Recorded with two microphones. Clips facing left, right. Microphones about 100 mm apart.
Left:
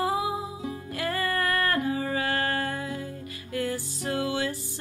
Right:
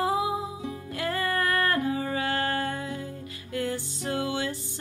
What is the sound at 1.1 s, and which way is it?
Music, 10° right (ahead or behind).